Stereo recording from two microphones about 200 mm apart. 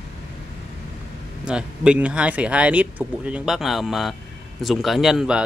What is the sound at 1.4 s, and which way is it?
Speech, 5° right (ahead or behind).